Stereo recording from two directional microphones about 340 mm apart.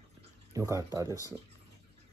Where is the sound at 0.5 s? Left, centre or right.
Centre.